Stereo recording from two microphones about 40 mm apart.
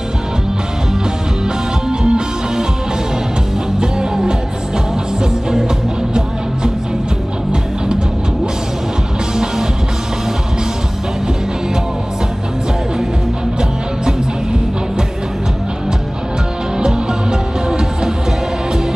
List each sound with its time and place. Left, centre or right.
1.9 s music: centre
3.8 s music: right
16.8 s music: centre